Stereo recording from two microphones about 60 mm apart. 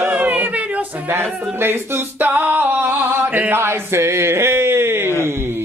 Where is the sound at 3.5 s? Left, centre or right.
Right.